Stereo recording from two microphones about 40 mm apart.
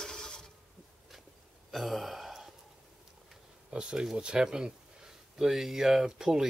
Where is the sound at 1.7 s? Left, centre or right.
Centre.